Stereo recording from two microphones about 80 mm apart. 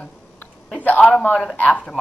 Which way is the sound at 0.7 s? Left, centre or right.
Centre.